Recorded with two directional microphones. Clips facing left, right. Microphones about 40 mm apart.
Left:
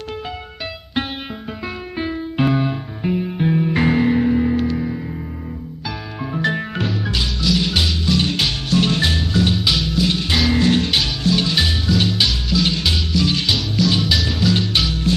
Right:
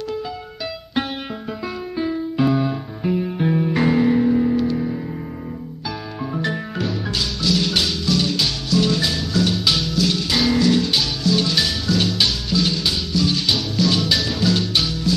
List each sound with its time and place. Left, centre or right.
2.0 s music: left
3.0 s music: centre
3.7 s music: left
6.4 s music: left
7.5 s music: centre
8.1 s music: left
10.5 s music: left
11.3 s music: left
12.3 s music: centre
12.6 s music: left
13.5 s music: centre
14.5 s music: left
15.1 s music: left